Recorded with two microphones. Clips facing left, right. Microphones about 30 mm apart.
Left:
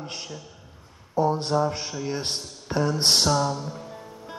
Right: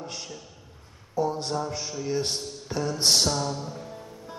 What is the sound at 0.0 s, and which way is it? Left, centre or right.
Speech, left.